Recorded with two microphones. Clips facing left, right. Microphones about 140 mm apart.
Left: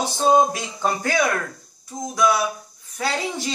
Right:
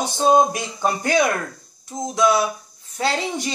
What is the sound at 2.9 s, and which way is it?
Speech, 25° right (ahead or behind).